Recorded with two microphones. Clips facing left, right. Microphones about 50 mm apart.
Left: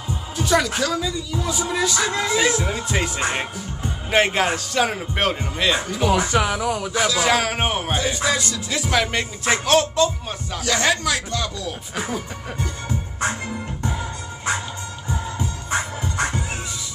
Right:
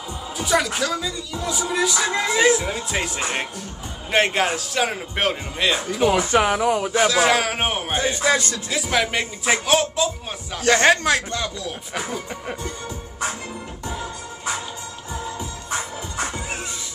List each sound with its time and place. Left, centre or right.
0.4 s speech: centre
6.3 s speech: right
7.2 s speech: centre
7.9 s speech: right
8.6 s speech: centre
10.6 s speech: right
13.8 s music: left